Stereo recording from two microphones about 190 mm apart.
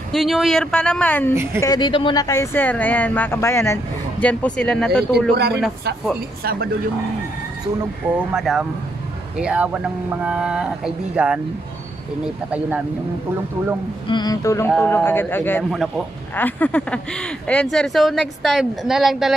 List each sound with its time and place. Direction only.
0.1 s speech: centre (ahead or behind)
1.3 s a woman's voice: 15° right (ahead or behind)
1.6 s speech: 20° left (ahead or behind); by 5.0 s 5° left (ahead or behind)
5.3 s speech: 60° right (ahead or behind)
7.8 s a woman's voice: 5° right (ahead or behind)
12.5 s a woman's voice: 5° right (ahead or behind)
14.0 s speech: 20° left (ahead or behind); by 19.3 s centre (ahead or behind)